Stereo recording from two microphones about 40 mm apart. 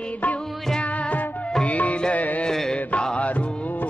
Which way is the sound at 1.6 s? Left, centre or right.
Left.